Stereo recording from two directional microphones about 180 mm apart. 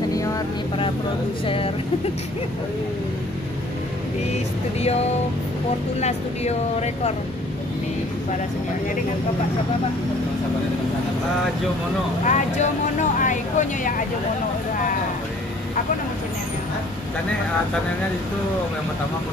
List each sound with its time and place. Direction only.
1.4 s speech: 30° left (ahead or behind)
5.9 s speech: 40° left (ahead or behind)
12.3 s speech: 40° left (ahead or behind)